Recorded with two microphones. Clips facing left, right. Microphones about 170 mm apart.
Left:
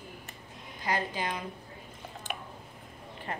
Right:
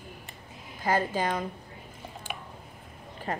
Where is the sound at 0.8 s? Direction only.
45° right (ahead or behind).